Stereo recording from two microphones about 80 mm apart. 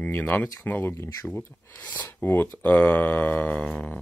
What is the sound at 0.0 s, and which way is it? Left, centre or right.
Speech, left.